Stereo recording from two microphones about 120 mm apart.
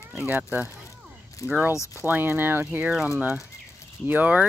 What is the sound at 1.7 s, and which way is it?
Speech, 25° left (ahead or behind).